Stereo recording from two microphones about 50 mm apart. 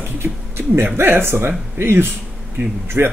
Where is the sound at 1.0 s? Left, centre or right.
Right.